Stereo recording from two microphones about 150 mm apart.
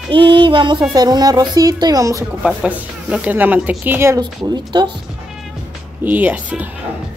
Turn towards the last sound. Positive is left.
turn(degrees=-10)  # may be behind; listen again after turning